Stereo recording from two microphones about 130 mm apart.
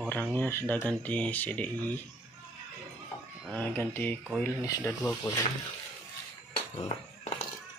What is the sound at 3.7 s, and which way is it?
Speech, 15° left (ahead or behind).